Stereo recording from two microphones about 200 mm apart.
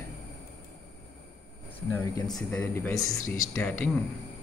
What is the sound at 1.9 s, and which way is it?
Speech, 15° left (ahead or behind).